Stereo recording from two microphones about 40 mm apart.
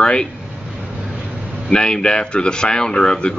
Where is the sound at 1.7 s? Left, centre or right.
Left.